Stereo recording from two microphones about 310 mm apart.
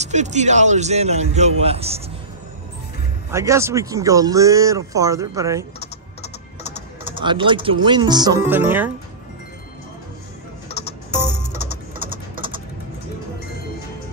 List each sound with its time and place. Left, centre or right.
0.0 s speech: right
3.3 s speech: centre
7.2 s speech: centre
10.7 s music: centre
12.4 s typing: centre